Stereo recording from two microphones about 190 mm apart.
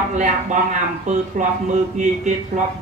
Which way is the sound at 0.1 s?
40° right (ahead or behind).